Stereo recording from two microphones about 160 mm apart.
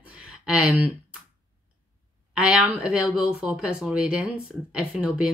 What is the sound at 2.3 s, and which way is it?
Speech, 5° right (ahead or behind).